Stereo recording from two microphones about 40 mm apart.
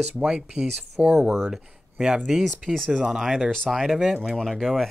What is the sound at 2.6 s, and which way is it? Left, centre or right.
Speech, centre.